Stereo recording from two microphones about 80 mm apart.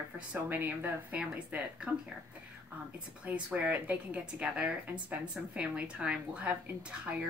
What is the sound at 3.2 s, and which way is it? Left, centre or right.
A woman's voice, centre.